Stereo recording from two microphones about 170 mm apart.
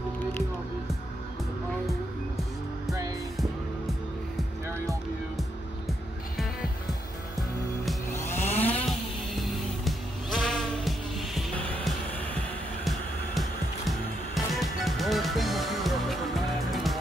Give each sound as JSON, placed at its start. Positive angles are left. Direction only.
{"t": 2.9, "sound": "music", "side_deg": -20}
{"t": 8.3, "sound": "chainsaw", "side_deg": 40}
{"t": 8.6, "sound": "music", "side_deg": 0}